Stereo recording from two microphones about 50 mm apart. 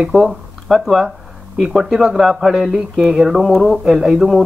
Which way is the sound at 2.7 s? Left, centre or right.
Centre.